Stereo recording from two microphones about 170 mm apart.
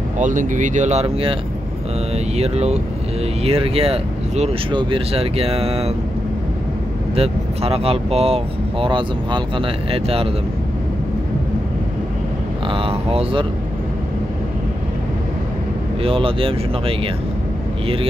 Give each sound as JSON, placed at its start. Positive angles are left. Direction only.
{"t": 0.2, "sound": "speech", "side_deg": -50}
{"t": 7.2, "sound": "speech", "side_deg": -35}
{"t": 12.6, "sound": "speech", "side_deg": -30}
{"t": 16.0, "sound": "speech", "side_deg": -35}